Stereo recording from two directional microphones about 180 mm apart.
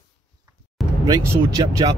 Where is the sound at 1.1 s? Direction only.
20° right (ahead or behind).